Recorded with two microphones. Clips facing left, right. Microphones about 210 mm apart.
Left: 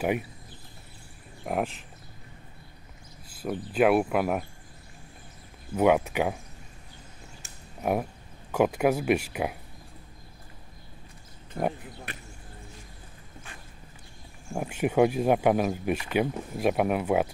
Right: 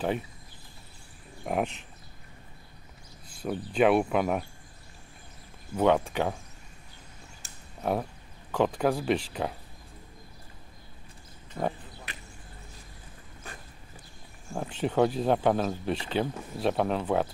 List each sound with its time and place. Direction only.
1.4 s speech: 5° left (ahead or behind)
3.3 s speech: 5° left (ahead or behind)
5.8 s speech: 10° left (ahead or behind)
7.4 s a sound: 35° right (ahead or behind)
7.8 s speech: 10° left (ahead or behind)
14.5 s speech: 10° left (ahead or behind)